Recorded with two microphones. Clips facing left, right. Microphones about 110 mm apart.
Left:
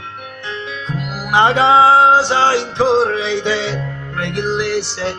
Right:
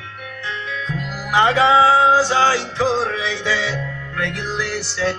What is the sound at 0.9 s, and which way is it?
Music, 65° left (ahead or behind).